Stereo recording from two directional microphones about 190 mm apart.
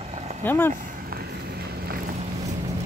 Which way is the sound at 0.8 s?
50° right (ahead or behind).